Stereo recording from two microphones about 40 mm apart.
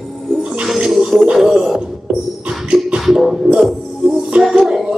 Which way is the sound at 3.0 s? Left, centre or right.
Centre.